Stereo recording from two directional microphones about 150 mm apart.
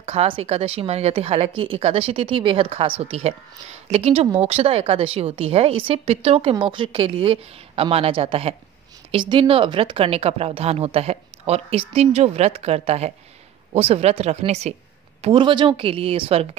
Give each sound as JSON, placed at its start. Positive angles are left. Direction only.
{"t": 0.0, "sound": "a woman's voice", "side_deg": -45}
{"t": 15.3, "sound": "a woman's voice", "side_deg": -30}